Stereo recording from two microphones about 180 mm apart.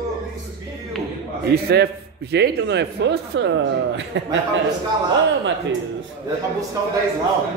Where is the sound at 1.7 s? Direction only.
65° right (ahead or behind).